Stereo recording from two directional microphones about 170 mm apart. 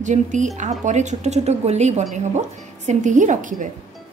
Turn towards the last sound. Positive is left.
turn(degrees=-50)  # may be behind; listen again after turning